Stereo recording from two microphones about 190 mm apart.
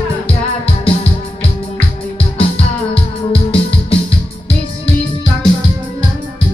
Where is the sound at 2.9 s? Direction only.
30° left (ahead or behind).